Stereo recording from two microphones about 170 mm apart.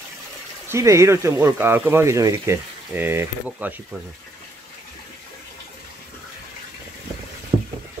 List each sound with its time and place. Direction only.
0.7 s speech: 15° right (ahead or behind)